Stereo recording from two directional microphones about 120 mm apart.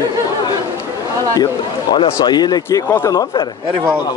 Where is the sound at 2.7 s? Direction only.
20° left (ahead or behind).